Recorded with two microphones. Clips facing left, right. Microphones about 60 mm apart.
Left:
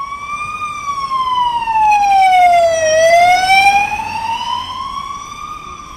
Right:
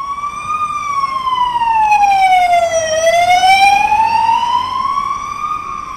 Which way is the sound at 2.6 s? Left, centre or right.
Left.